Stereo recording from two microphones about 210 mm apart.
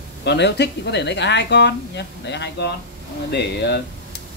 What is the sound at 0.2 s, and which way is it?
Speech, 55° left (ahead or behind).